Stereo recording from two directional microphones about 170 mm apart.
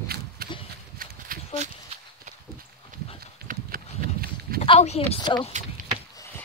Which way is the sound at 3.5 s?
60° right (ahead or behind).